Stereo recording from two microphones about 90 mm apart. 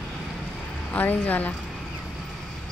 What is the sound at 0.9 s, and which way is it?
Speech, 20° left (ahead or behind).